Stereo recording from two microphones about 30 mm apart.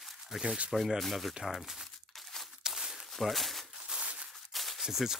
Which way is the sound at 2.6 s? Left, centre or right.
Right.